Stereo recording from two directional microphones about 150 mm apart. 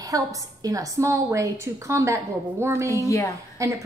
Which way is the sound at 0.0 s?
25° right (ahead or behind).